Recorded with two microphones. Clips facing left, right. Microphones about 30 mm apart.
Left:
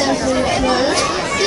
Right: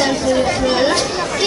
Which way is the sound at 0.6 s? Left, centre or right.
Centre.